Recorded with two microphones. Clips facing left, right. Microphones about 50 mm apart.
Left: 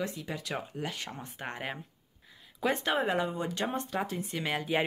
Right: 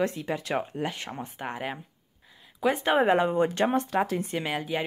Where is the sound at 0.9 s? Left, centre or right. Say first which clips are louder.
Right 4 dB; right.